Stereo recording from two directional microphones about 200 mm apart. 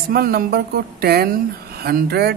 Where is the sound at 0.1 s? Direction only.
50° right (ahead or behind).